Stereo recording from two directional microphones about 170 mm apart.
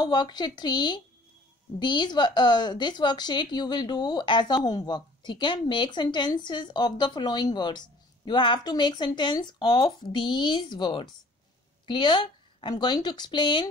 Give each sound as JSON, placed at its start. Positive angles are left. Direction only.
{"t": 0.0, "sound": "a woman's voice", "side_deg": 25}